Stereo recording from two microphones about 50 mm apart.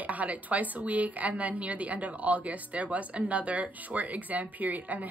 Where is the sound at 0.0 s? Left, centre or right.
Right.